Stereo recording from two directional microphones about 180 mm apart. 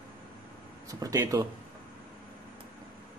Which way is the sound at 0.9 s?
20° right (ahead or behind).